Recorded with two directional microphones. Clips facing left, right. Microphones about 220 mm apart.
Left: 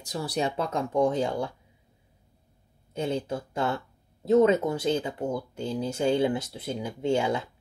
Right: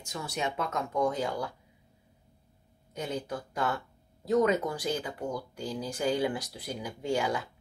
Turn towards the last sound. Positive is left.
turn(degrees=25)  # may be behind; listen again after turning